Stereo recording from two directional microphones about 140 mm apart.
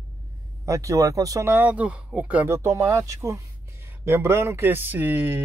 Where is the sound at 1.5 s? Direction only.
10° right (ahead or behind).